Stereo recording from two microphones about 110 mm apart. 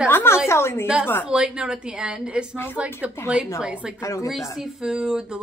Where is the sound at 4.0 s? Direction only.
30° left (ahead or behind).